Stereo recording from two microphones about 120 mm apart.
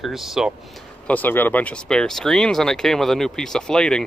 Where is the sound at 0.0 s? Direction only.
Centre (ahead or behind).